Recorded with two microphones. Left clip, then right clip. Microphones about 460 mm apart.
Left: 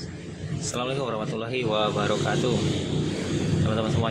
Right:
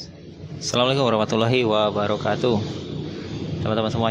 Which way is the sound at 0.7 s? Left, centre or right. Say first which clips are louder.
Right 9 dB; right.